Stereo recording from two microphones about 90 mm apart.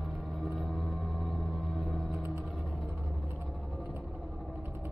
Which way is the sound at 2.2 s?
15° right (ahead or behind).